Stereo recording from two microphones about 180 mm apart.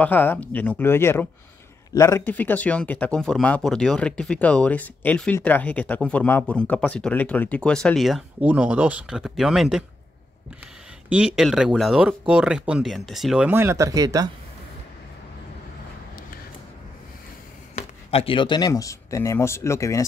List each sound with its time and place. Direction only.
0.0 s speech: 10° left (ahead or behind)
11.1 s speech: 5° right (ahead or behind); by 14.3 s 20° right (ahead or behind)
17.7 s speech: 30° left (ahead or behind); by 20.0 s 15° left (ahead or behind)